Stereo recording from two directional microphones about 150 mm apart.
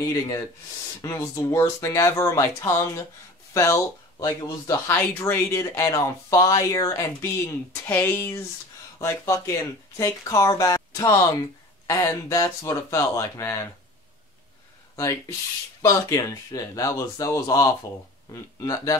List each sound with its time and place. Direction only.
1.0 s speech: 20° left (ahead or behind)
15.0 s speech: 20° left (ahead or behind)